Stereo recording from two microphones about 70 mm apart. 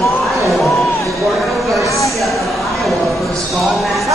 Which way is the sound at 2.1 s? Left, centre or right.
Centre.